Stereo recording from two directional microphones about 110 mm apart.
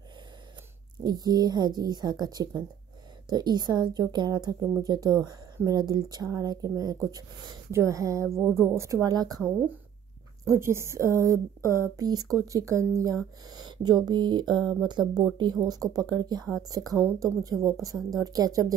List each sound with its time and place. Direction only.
1.0 s a woman's voice: 35° right (ahead or behind)
10.5 s a woman's voice: 25° right (ahead or behind)